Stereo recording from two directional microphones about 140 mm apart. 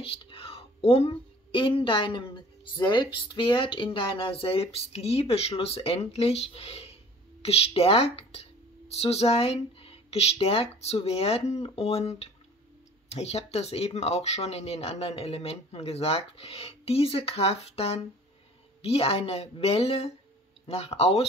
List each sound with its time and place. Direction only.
0.0 s speech: 40° left (ahead or behind)